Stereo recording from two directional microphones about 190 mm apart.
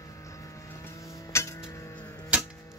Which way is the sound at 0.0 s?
15° left (ahead or behind).